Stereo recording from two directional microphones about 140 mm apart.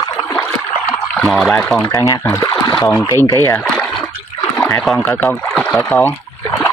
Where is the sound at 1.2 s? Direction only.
5° left (ahead or behind).